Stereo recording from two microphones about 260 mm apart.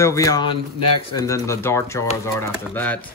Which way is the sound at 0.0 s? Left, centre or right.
Centre.